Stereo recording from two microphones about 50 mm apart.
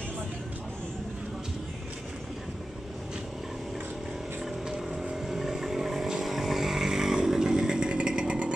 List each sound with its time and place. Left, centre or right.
4.6 s vehicle: centre